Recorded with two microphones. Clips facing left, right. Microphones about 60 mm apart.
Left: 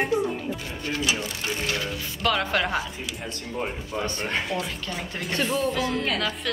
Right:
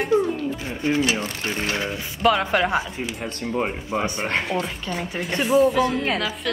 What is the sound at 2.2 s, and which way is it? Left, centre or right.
Speech, centre.